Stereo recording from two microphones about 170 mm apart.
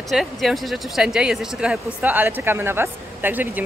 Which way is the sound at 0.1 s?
Centre (ahead or behind).